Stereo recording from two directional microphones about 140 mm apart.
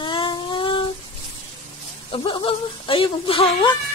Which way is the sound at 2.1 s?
40° left (ahead or behind).